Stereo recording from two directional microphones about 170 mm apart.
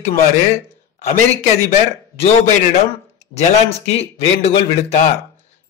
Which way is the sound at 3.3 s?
40° left (ahead or behind).